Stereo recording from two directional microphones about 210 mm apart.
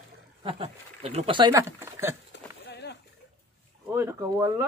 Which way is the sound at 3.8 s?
15° right (ahead or behind).